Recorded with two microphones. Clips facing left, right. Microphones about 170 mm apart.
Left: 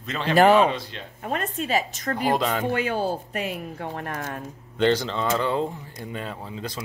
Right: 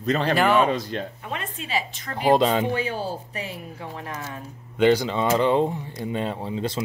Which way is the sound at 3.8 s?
55° left (ahead or behind).